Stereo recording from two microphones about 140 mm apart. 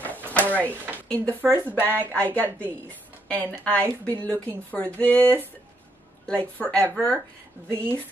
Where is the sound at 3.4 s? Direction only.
10° left (ahead or behind).